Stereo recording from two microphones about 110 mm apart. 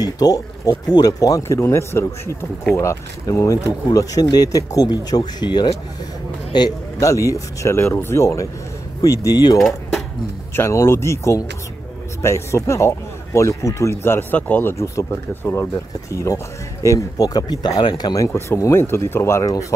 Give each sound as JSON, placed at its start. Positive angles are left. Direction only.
{"t": 0.0, "sound": "speech", "side_deg": 35}
{"t": 9.6, "sound": "speech", "side_deg": 5}
{"t": 10.5, "sound": "speech", "side_deg": 25}